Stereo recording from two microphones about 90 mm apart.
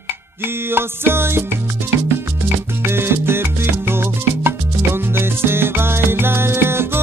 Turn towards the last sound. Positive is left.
turn(degrees=-25)  # may be behind; listen again after turning